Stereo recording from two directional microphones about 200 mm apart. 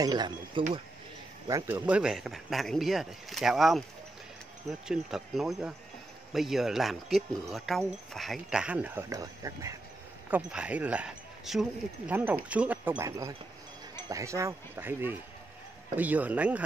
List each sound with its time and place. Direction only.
0.0 s speech: 20° right (ahead or behind)
1.5 s speech: 10° right (ahead or behind)